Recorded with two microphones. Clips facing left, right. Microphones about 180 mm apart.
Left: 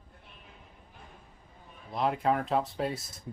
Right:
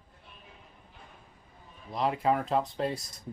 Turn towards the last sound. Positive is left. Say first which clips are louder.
# right 1 dB
turn(degrees=0)  # may be behind; listen again after turning